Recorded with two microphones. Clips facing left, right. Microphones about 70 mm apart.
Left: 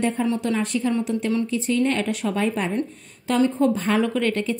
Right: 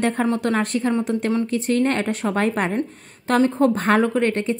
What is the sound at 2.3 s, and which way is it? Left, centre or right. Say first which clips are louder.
A woman's voice: right 3 dB; right.